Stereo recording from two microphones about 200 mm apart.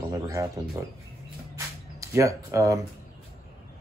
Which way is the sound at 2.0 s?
15° right (ahead or behind).